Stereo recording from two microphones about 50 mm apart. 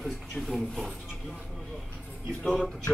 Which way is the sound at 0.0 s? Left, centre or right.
Centre.